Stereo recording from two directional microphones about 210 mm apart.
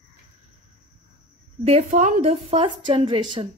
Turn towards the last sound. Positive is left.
turn(degrees=-25)  # may be behind; listen again after turning